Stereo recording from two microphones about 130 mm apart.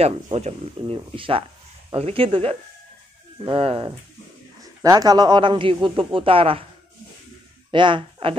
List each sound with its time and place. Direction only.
0.0 s speech: 55° right (ahead or behind)
4.8 s speech: 30° right (ahead or behind); by 6.6 s 45° right (ahead or behind)
7.7 s speech: 40° right (ahead or behind)